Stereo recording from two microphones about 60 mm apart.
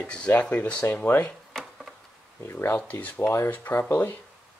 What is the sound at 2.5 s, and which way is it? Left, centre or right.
Speech, left.